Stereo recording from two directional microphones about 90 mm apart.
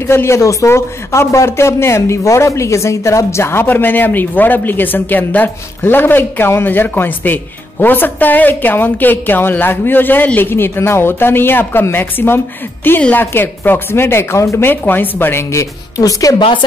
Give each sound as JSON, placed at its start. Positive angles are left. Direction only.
{"t": 0.0, "sound": "a man's voice", "side_deg": 30}